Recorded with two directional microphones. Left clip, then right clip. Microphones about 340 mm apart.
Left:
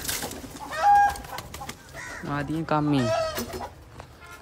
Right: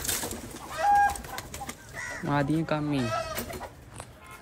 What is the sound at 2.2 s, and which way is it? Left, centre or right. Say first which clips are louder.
Speech: right 2 dB; centre.